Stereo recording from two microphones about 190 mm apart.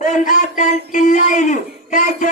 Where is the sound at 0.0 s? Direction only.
40° left (ahead or behind).